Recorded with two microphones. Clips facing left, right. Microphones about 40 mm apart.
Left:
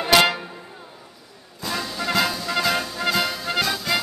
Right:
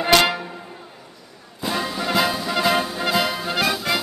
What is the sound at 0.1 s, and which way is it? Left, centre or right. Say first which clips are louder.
Music: even; centre.